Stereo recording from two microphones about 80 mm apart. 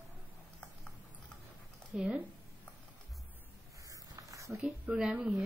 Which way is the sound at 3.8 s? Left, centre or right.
Right.